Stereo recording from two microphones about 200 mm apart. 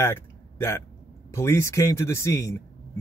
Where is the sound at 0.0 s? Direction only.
15° left (ahead or behind).